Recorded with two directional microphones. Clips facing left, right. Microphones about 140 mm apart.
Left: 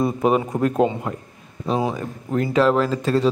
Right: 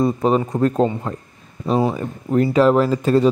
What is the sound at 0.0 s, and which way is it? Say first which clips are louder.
A man's voice: right 2 dB; 10° left (ahead or behind).